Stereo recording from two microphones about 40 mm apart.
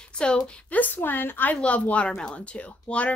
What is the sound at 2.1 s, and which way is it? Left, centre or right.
Speech, left.